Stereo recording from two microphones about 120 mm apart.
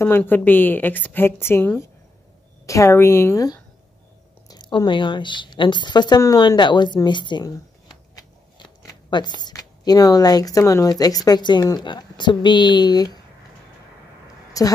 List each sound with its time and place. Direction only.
0.0 s a woman's voice: 15° left (ahead or behind)
4.5 s speech: 35° left (ahead or behind)
14.6 s a woman's voice: 30° left (ahead or behind)